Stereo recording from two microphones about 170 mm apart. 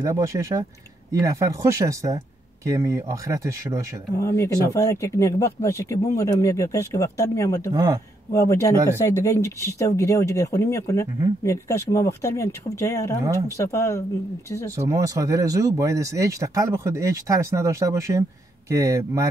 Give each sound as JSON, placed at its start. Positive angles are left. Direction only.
{"t": 0.0, "sound": "speech", "side_deg": -20}
{"t": 4.2, "sound": "speech", "side_deg": 15}
{"t": 7.7, "sound": "speech", "side_deg": -20}
{"t": 8.3, "sound": "speech", "side_deg": 15}
{"t": 14.8, "sound": "speech", "side_deg": -20}